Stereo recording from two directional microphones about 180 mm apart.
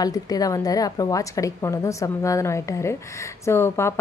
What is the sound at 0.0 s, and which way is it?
A woman's voice, 20° left (ahead or behind).